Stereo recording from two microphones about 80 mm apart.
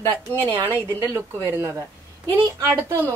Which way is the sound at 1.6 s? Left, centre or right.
Right.